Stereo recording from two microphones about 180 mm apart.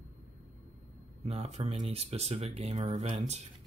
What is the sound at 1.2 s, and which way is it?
Speech, 35° right (ahead or behind).